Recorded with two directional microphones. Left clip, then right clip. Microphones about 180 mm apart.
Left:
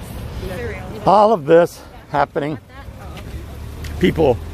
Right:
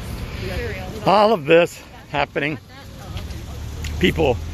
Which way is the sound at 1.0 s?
10° left (ahead or behind).